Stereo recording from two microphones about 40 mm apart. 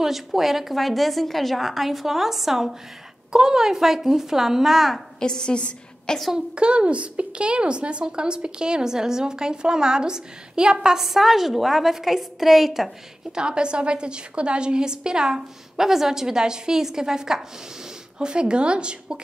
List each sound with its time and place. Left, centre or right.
0.0 s a woman's voice: centre
5.2 s a woman's voice: centre
6.3 s a woman's voice: right
11.1 s a woman's voice: centre
13.3 s a woman's voice: right